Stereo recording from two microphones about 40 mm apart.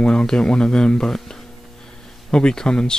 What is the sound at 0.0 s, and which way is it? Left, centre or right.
Speech, left.